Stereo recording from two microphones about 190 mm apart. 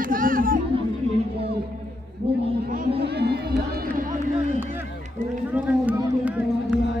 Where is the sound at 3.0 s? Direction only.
60° right (ahead or behind).